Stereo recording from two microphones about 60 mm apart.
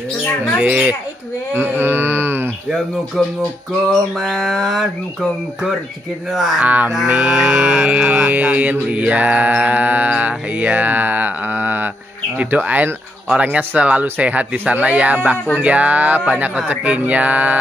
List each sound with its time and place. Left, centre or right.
0.6 s mantra: right
1.8 s a sound: right
4.2 s speech: centre
6.6 s mantra: right